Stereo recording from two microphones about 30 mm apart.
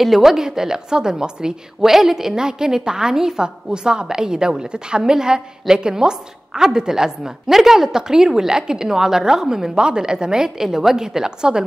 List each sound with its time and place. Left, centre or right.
0.0 s a woman's voice: centre
1.8 s a woman's voice: centre; by 11.6 s right